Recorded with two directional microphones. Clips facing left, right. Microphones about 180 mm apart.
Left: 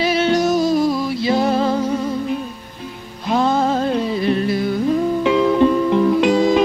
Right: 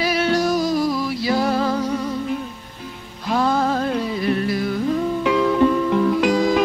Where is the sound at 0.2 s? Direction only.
20° left (ahead or behind).